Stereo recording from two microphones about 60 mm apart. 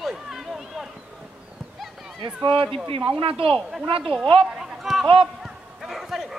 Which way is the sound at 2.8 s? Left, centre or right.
Centre.